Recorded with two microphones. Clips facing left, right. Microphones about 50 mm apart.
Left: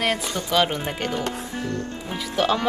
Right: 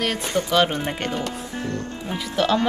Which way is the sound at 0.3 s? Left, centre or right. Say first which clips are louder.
Right 4 dB; right.